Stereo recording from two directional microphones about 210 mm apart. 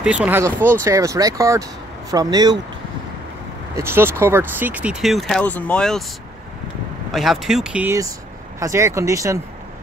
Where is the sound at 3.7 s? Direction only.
10° right (ahead or behind).